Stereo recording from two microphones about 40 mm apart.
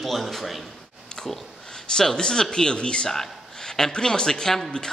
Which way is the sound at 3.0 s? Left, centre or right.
Centre.